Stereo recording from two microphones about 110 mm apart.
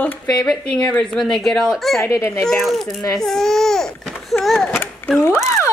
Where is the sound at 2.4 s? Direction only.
Centre (ahead or behind).